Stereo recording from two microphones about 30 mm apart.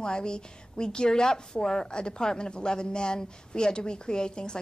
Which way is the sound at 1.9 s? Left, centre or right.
Left.